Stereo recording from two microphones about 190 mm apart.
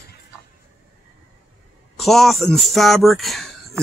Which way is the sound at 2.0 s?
Centre (ahead or behind).